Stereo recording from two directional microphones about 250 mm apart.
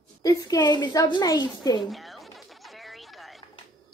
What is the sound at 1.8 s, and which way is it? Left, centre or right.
Music, centre.